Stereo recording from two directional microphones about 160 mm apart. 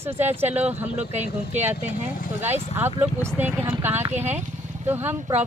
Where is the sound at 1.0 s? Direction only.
45° right (ahead or behind).